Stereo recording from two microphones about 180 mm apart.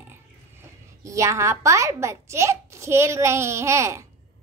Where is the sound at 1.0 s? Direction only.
15° right (ahead or behind).